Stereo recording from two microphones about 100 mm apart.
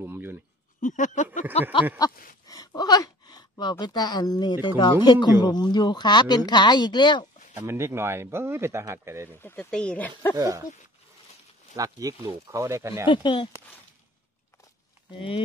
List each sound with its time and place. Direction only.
0.0 s a sound: 20° right (ahead or behind)
1.5 s a sound: 75° left (ahead or behind)
2.0 s a sound: 40° left (ahead or behind)
3.8 s speech: 45° left (ahead or behind)
7.6 s speech: 25° right (ahead or behind)
9.4 s speech: 20° left (ahead or behind)
9.7 s speech: 10° left (ahead or behind)
10.3 s speech: 35° right (ahead or behind)
11.7 s speech: 35° right (ahead or behind)
13.0 s speech: 55° left (ahead or behind)
15.1 s speech: 60° left (ahead or behind)